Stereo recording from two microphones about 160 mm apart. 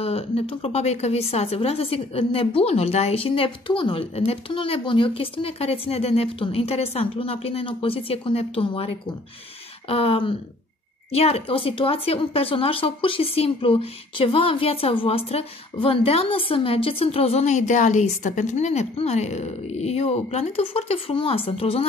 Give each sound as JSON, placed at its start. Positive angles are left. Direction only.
{"t": 0.0, "sound": "speech", "side_deg": 40}